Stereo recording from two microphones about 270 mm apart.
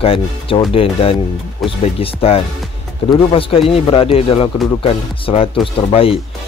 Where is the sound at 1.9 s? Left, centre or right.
Left.